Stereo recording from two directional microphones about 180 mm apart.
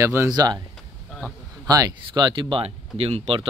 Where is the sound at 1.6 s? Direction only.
20° right (ahead or behind).